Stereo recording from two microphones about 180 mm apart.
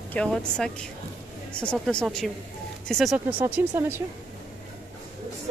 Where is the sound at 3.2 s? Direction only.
10° right (ahead or behind).